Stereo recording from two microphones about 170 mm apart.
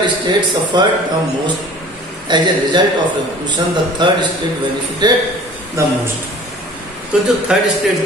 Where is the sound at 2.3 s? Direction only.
25° right (ahead or behind).